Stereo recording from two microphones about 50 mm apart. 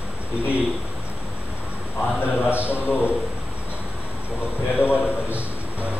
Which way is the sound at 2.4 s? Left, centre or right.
Right.